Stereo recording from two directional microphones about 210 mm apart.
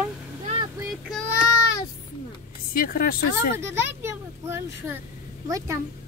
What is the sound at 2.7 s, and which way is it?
Speech, 40° left (ahead or behind).